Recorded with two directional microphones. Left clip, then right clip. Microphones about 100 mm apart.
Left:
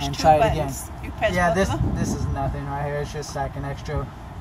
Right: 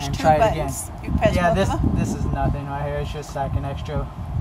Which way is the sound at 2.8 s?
5° right (ahead or behind).